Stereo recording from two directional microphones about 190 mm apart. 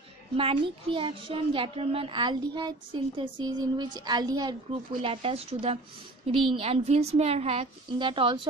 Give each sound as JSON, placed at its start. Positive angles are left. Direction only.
{"t": 0.4, "sound": "a child's voice", "side_deg": -30}